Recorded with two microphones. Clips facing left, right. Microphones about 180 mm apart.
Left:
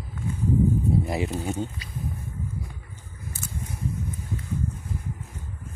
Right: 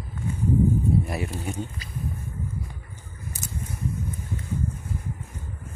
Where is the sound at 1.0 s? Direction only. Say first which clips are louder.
Left 3 dB; 20° left (ahead or behind).